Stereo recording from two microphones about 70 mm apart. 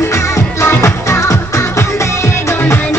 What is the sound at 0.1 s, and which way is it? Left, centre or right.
Music, left.